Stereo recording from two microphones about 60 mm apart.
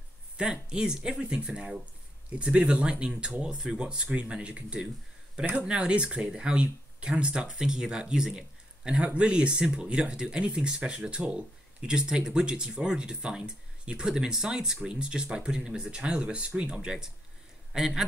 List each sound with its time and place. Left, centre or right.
0.4 s speech: centre